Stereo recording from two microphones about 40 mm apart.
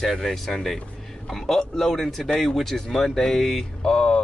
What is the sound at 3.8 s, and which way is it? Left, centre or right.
Speech, centre.